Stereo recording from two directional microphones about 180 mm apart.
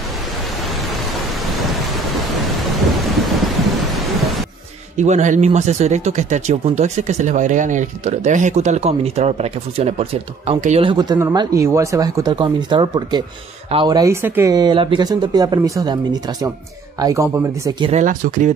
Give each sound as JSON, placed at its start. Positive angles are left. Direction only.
{"t": 1.5, "sound": "thunder", "side_deg": 0}
{"t": 4.9, "sound": "speech", "side_deg": -40}
{"t": 14.5, "sound": "speech", "side_deg": -25}
{"t": 17.9, "sound": "speech", "side_deg": -50}